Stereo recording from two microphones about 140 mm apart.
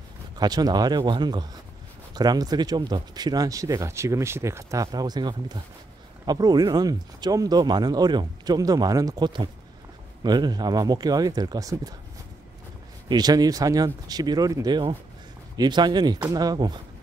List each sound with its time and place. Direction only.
0.4 s speech: 30° right (ahead or behind)
13.1 s speech: 30° right (ahead or behind)